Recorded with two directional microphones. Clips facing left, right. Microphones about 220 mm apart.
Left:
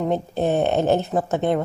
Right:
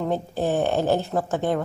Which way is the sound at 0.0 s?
20° left (ahead or behind).